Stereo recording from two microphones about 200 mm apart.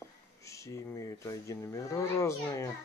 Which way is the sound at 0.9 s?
15° left (ahead or behind).